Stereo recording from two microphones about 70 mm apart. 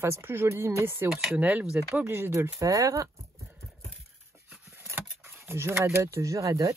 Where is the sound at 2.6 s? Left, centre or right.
Right.